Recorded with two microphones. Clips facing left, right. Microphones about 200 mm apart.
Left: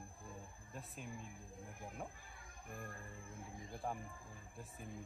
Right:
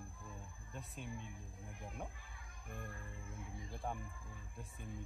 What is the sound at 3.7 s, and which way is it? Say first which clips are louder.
Speech: left 1 dB; centre (ahead or behind).